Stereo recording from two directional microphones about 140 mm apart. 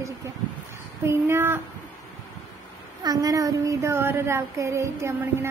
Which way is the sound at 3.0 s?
25° right (ahead or behind).